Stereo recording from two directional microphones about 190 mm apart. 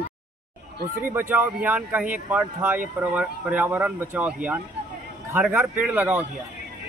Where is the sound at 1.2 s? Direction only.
10° right (ahead or behind).